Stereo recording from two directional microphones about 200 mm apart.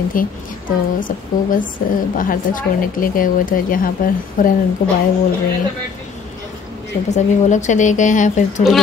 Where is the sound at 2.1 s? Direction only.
45° left (ahead or behind).